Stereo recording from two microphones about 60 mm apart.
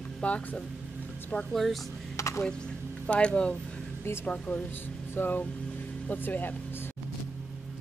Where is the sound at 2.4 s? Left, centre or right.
Centre.